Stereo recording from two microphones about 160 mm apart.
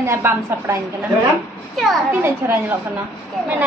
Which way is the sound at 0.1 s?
15° right (ahead or behind).